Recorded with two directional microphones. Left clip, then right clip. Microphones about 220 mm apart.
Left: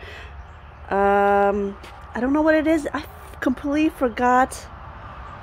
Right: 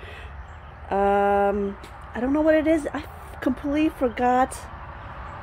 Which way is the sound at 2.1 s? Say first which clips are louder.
Left 2 dB; 15° left (ahead or behind).